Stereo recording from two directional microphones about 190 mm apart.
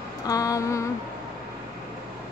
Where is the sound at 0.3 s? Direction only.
20° left (ahead or behind).